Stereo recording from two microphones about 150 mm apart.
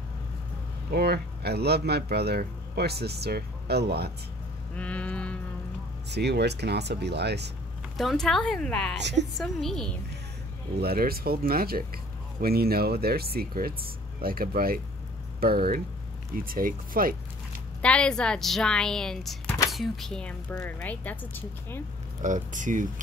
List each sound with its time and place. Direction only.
0.9 s speech: 90° right
4.7 s a sound: 10° left (ahead or behind)
6.1 s speech: 90° right
8.0 s a woman's voice: centre (ahead or behind)
10.8 s speech: 85° right
12.4 s speech: 90° right
14.2 s speech: 75° right (ahead or behind)
17.8 s a woman's voice: 5° left (ahead or behind)
22.2 s speech: 55° right (ahead or behind)